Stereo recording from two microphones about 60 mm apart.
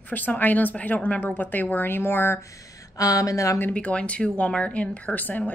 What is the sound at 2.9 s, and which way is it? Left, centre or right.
Speech, left.